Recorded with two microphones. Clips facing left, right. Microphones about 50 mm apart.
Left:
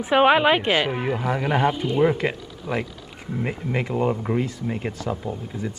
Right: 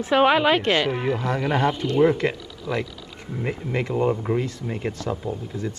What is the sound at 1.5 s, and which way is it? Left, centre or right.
Speech, centre.